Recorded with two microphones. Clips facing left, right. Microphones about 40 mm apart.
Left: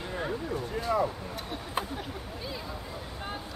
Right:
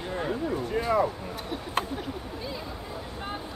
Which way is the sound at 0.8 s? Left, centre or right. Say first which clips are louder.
Right 4 dB; right.